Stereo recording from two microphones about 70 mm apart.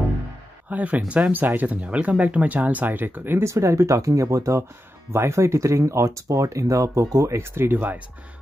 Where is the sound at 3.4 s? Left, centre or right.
Right.